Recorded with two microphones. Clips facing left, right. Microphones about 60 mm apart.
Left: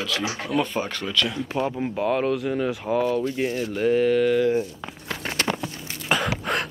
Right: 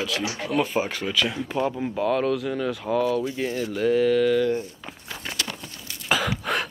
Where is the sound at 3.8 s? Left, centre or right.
Centre.